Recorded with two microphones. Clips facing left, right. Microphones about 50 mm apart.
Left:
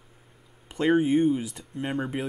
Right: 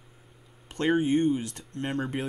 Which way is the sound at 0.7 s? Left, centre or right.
Centre.